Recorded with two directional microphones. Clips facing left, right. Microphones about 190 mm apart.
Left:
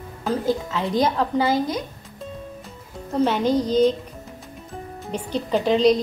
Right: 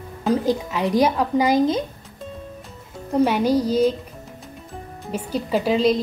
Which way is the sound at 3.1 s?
10° right (ahead or behind).